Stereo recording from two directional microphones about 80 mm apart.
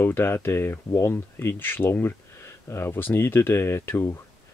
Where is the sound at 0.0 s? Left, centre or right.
Left.